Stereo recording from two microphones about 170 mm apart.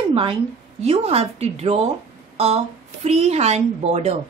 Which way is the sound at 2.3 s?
35° right (ahead or behind).